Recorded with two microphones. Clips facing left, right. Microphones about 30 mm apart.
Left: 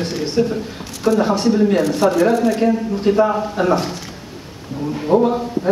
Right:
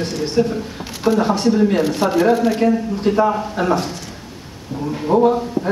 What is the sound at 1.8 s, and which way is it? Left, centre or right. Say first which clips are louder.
Speech: left 1 dB; centre.